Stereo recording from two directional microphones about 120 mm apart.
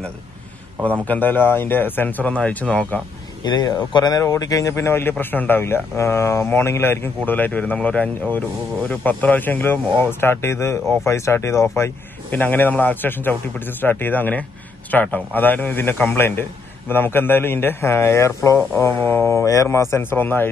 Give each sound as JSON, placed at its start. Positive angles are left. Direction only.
{"t": 1.0, "sound": "speech", "side_deg": 15}
{"t": 3.4, "sound": "speech", "side_deg": 35}